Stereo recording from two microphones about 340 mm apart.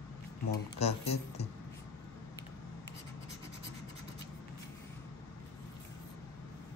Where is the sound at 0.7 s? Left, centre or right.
Centre.